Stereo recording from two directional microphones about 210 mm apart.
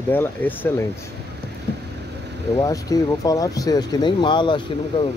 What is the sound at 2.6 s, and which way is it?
Speech, 15° left (ahead or behind).